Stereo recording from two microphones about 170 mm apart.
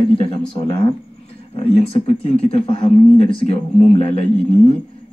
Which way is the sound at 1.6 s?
35° left (ahead or behind).